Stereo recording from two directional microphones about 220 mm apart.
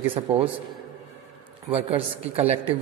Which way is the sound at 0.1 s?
25° right (ahead or behind).